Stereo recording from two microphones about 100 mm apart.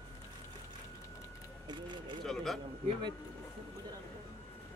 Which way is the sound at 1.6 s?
50° right (ahead or behind).